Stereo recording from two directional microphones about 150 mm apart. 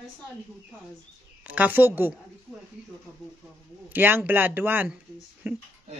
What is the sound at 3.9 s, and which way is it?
A man's voice, 15° right (ahead or behind).